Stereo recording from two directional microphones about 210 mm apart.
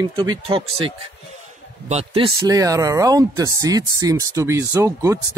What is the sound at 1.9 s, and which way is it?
Speech, 30° right (ahead or behind).